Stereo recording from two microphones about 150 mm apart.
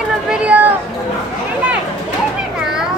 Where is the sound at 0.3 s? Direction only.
10° right (ahead or behind).